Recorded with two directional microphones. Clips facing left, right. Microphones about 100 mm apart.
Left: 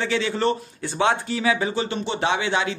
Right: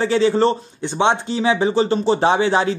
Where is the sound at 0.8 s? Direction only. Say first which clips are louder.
Right 4 dB; 20° right (ahead or behind).